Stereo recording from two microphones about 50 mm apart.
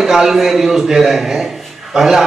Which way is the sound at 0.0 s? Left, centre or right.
Centre.